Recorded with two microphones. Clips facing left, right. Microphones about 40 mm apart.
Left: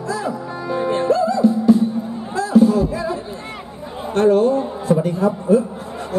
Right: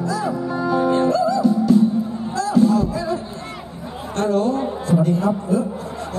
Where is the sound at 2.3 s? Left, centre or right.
Left.